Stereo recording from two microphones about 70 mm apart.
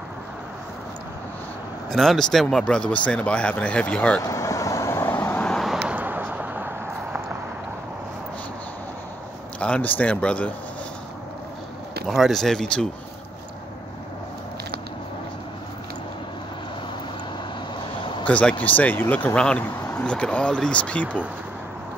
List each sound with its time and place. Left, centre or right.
1.9 s speech: centre
4.2 s vehicle: left
5.9 s a sound: right
9.6 s speech: centre
12.1 s speech: centre
18.2 s speech: centre